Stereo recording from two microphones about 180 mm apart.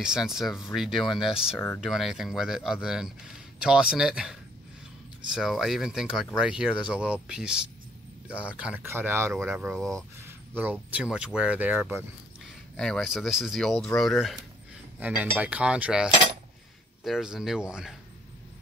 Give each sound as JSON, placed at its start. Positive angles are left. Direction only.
{"t": 0.0, "sound": "speech", "side_deg": -5}
{"t": 9.8, "sound": "speech", "side_deg": 5}
{"t": 10.6, "sound": "speech", "side_deg": -10}
{"t": 12.7, "sound": "speech", "side_deg": 5}
{"t": 16.1, "sound": "cutlery", "side_deg": -25}
{"t": 17.0, "sound": "speech", "side_deg": 0}